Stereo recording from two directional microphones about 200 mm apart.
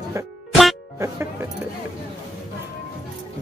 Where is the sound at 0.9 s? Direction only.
15° right (ahead or behind).